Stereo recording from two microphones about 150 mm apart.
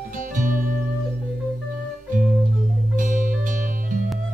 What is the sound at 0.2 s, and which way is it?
Music, 60° right (ahead or behind).